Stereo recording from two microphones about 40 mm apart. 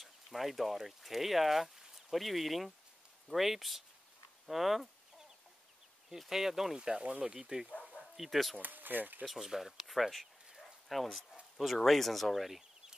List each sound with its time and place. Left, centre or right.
0.0 s speech: centre
6.0 s speech: centre
7.0 s speech: right
7.2 s speech: centre
8.2 s speech: centre
8.5 s speech: right
9.2 s speech: centre
10.6 s dog: centre
11.5 s speech: centre